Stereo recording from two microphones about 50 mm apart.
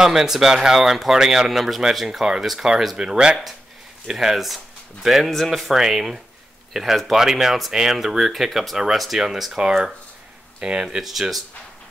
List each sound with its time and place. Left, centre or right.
0.0 s speech: centre
3.0 s speech: centre
11.1 s speech: centre